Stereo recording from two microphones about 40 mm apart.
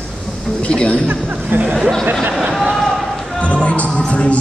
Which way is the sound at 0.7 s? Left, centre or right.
Left.